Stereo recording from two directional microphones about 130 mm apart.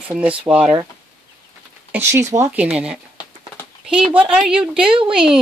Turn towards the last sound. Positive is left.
turn(degrees=-5)  # may be behind; listen again after turning